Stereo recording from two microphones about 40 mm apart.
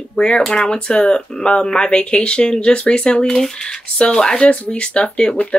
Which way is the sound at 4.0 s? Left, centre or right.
Centre.